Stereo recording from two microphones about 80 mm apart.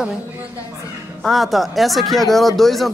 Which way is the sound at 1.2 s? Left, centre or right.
Centre.